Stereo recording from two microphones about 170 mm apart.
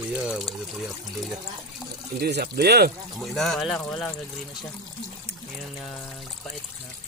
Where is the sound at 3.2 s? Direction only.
Centre (ahead or behind).